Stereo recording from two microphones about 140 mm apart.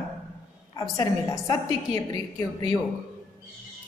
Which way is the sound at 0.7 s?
25° left (ahead or behind).